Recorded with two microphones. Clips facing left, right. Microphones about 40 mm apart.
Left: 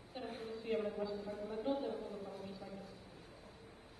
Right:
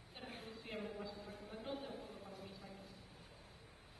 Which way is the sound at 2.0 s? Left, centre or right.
Left.